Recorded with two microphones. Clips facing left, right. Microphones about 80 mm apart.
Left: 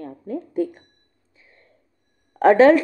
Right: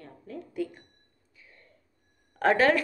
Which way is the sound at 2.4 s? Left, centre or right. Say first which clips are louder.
Left 10 dB; left.